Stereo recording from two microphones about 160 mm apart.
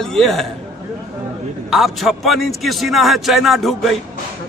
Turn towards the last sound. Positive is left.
turn(degrees=0)  # may be behind; listen again after turning